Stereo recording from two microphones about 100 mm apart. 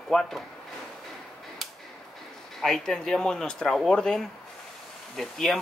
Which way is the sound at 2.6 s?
5° left (ahead or behind).